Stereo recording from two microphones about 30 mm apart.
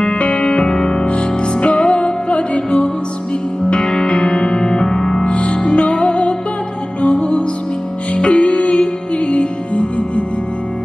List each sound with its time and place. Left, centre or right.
0.0 s music: left
0.5 s music: left
3.7 s music: left
5.2 s music: left